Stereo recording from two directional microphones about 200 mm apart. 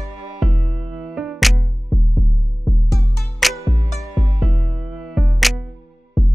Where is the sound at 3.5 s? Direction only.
15° right (ahead or behind).